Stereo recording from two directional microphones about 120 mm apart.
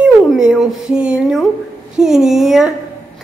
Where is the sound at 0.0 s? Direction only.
5° right (ahead or behind).